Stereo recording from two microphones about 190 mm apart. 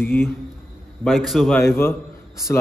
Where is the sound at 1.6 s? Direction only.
10° left (ahead or behind).